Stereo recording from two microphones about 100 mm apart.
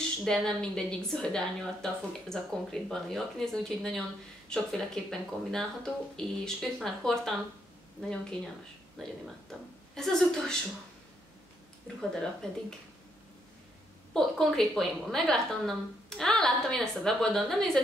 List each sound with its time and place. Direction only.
0.2 s a woman's voice: 5° left (ahead or behind)
12.4 s speech: 5° left (ahead or behind)
14.1 s a woman's voice: centre (ahead or behind)